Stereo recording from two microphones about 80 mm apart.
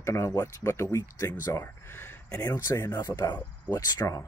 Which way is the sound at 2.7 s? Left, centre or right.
Left.